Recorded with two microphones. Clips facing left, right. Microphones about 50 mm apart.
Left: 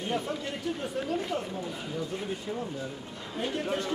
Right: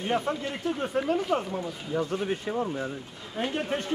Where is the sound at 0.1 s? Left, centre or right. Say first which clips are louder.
Right 5 dB; right.